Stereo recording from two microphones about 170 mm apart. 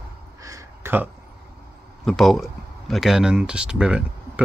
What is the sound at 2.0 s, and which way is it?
Speech, centre (ahead or behind).